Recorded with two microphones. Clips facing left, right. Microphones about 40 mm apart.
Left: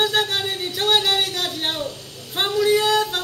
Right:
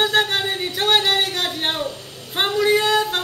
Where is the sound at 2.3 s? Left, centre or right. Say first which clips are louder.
Right 1 dB; centre.